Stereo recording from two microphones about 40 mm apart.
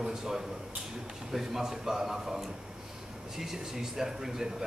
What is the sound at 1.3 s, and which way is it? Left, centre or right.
A man's voice, centre.